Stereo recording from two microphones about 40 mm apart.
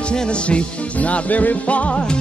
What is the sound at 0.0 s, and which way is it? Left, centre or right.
Music, left.